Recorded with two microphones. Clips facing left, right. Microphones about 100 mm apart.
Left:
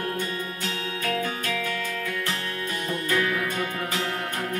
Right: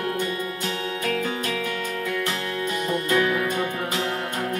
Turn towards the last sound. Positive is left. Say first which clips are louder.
# right 3 dB
turn(degrees=-25)  # may be behind; listen again after turning